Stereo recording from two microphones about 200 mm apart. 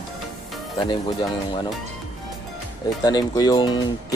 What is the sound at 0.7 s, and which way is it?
Speech, 20° left (ahead or behind).